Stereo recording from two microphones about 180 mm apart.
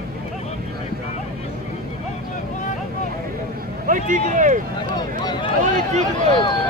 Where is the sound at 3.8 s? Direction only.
45° right (ahead or behind).